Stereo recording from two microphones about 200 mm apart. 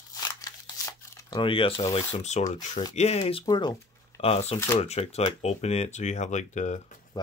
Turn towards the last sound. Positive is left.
turn(degrees=35)  # may be behind; listen again after turning